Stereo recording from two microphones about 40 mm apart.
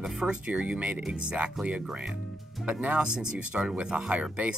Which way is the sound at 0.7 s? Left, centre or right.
Right.